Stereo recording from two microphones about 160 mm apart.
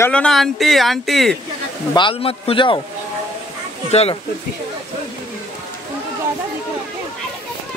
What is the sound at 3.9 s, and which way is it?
Speech, 40° left (ahead or behind).